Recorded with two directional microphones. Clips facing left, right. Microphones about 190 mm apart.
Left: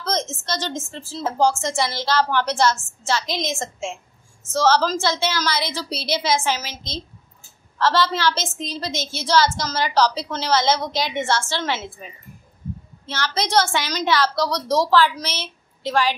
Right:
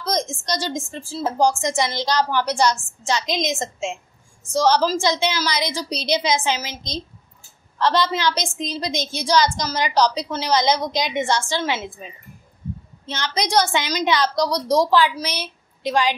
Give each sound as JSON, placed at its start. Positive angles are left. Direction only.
{"t": 0.0, "sound": "a woman's voice", "side_deg": -15}